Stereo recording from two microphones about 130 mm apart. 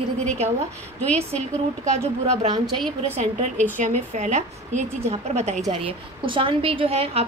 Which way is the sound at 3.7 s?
75° right (ahead or behind).